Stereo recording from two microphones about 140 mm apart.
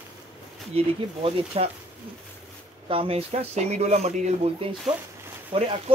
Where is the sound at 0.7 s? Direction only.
40° right (ahead or behind).